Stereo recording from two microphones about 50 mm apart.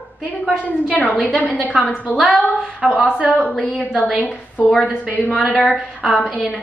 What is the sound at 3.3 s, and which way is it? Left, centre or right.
Speech, left.